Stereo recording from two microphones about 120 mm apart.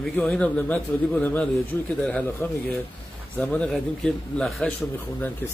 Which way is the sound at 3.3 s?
10° left (ahead or behind).